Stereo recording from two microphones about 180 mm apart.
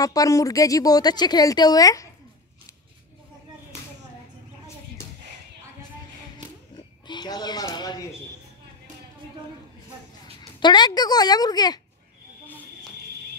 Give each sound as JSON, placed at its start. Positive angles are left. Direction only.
{"t": 0.0, "sound": "a woman's voice", "side_deg": 20}
{"t": 6.3, "sound": "oink", "side_deg": 25}
{"t": 10.4, "sound": "a woman's voice", "side_deg": 25}